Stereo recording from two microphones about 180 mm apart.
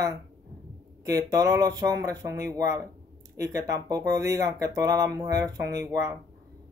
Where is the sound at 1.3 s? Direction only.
20° right (ahead or behind).